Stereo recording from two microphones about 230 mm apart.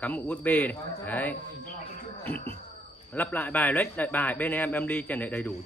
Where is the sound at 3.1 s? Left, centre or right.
Centre.